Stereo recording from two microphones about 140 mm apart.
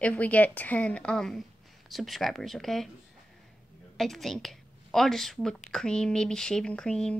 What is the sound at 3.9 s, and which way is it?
A woman's voice, centre (ahead or behind).